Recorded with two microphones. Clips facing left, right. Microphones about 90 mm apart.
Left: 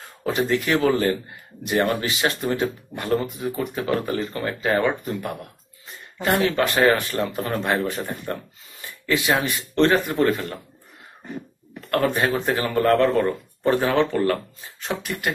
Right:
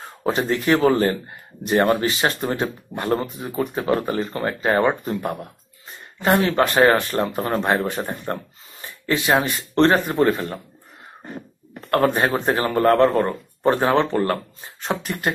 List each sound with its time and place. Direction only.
0.2 s a man's voice: 35° right (ahead or behind)
11.9 s speech: 35° right (ahead or behind)